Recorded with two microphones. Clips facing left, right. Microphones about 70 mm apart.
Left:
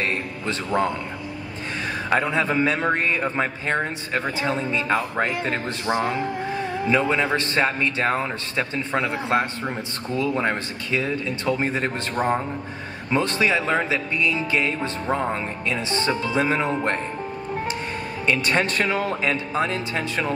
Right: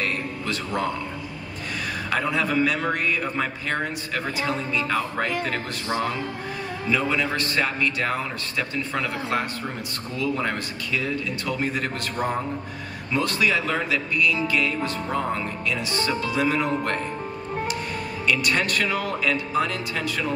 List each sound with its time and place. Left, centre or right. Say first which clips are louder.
0.0 s music: left 2 dB; left
2.0 s a man's voice: left 3 dB; left
18.2 s a man's voice: left 2 dB; left